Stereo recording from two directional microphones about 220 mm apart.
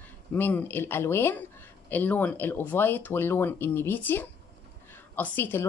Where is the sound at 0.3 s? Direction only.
10° left (ahead or behind).